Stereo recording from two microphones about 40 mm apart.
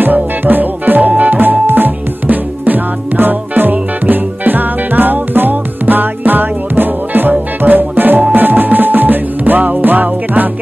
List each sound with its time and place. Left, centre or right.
0.0 s music: right